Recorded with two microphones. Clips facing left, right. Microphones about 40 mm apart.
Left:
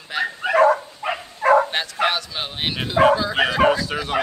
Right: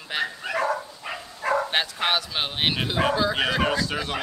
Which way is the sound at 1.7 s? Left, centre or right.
Centre.